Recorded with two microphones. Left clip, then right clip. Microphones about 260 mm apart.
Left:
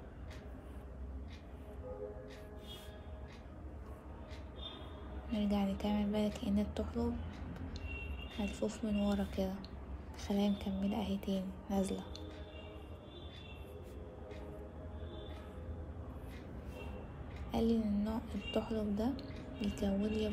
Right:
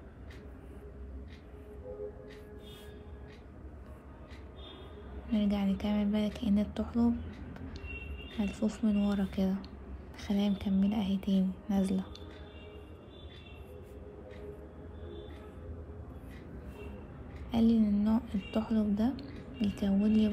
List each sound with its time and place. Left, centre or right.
5.4 s music: right
8.5 s music: right
17.5 s a woman's voice: right